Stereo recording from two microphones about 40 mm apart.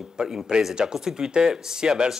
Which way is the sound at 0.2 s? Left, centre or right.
Centre.